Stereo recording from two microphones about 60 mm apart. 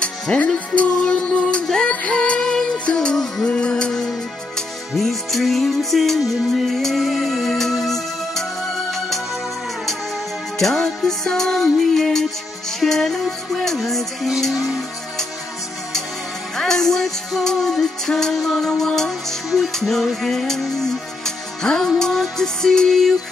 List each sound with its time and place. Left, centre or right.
0.0 s music: centre
10.6 s music: centre
16.5 s music: centre